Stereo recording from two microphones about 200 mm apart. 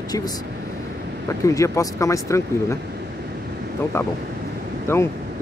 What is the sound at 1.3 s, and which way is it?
Speech, 15° left (ahead or behind).